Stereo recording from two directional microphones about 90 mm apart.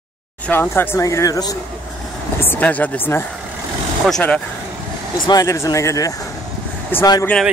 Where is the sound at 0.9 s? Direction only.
40° left (ahead or behind).